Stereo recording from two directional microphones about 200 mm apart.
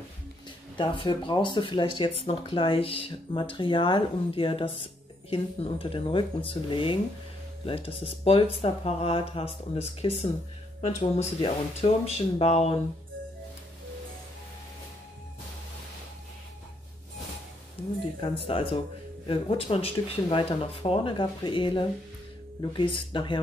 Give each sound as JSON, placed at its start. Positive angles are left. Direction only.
{"t": 0.7, "sound": "speech", "side_deg": 25}
{"t": 18.2, "sound": "speech", "side_deg": 25}